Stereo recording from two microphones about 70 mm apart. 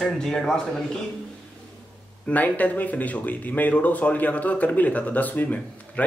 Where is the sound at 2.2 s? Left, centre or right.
Left.